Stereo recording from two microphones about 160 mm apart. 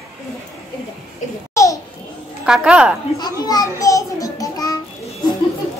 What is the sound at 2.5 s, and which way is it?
Speech, 5° right (ahead or behind).